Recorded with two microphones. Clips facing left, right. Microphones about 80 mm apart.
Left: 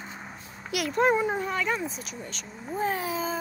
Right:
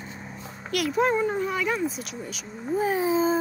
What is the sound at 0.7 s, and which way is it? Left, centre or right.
Speech, centre.